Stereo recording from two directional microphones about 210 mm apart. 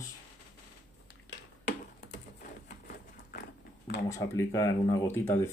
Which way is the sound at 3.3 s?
50° left (ahead or behind).